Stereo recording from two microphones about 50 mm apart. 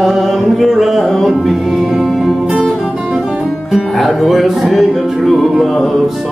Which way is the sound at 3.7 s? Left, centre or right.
Centre.